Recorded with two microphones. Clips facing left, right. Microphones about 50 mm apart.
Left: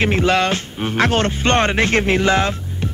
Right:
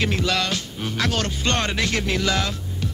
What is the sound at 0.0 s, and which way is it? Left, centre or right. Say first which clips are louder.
Speech: left 7 dB; left.